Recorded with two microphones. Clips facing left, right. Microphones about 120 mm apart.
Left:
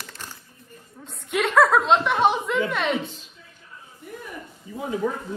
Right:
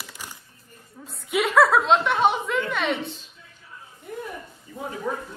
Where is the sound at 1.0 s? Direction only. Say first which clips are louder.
Even; 5° right (ahead or behind).